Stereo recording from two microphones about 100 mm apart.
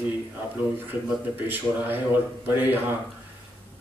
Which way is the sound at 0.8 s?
20° right (ahead or behind).